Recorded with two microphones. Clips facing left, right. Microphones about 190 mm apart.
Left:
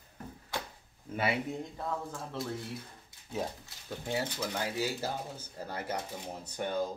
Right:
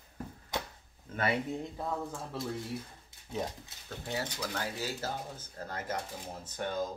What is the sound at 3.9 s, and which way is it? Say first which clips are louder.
Speech: left 3 dB; 20° left (ahead or behind).